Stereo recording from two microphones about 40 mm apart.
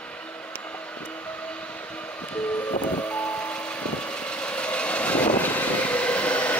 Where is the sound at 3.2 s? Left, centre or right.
Left.